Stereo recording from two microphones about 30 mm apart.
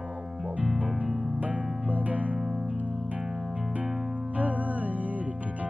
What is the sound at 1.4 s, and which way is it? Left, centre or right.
Music, right.